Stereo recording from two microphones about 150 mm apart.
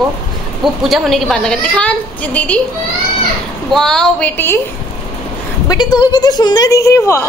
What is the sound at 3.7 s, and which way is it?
Speech, 5° left (ahead or behind).